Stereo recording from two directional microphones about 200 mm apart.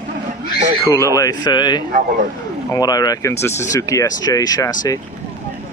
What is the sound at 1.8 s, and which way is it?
Speech, 45° right (ahead or behind).